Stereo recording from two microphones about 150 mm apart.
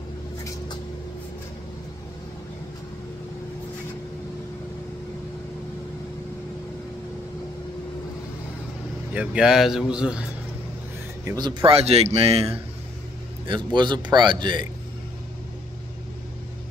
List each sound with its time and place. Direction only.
9.1 s speech: 5° right (ahead or behind)
11.2 s speech: 30° right (ahead or behind)
11.7 s speech: 45° right (ahead or behind)
13.7 s a man's voice: 30° right (ahead or behind)